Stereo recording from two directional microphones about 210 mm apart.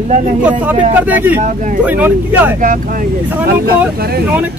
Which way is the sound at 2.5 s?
40° right (ahead or behind).